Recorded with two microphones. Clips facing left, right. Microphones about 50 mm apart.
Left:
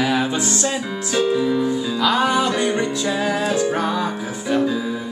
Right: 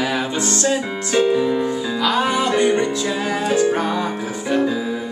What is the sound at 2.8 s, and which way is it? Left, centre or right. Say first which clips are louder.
Music: even; centre.